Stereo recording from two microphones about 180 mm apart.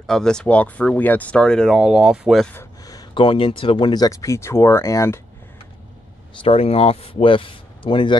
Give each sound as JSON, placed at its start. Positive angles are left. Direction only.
{"t": 0.0, "sound": "speech", "side_deg": 5}
{"t": 2.5, "sound": "speech", "side_deg": 15}
{"t": 6.4, "sound": "speech", "side_deg": 35}